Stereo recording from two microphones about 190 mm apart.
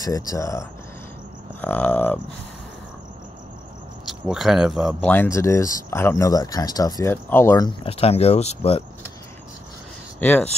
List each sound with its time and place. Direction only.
0.0 s speech: 20° left (ahead or behind)
4.0 s speech: 5° right (ahead or behind)
5.1 s speech: 10° left (ahead or behind)
7.8 s speech: 30° left (ahead or behind)
10.2 s speech: 10° left (ahead or behind)